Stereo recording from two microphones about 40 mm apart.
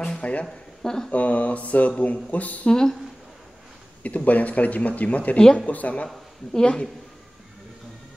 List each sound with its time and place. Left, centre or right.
0.2 s speech: left
0.8 s speech: centre
1.1 s speech: left
2.7 s speech: centre
4.0 s speech: left
6.5 s speech: left